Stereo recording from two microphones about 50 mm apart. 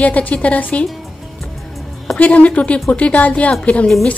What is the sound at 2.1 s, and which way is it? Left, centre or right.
A woman's voice, left.